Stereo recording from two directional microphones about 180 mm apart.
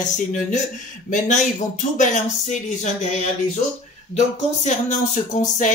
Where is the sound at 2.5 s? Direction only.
40° left (ahead or behind).